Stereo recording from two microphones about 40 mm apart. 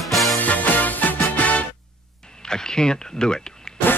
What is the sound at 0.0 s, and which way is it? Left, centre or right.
Music, centre.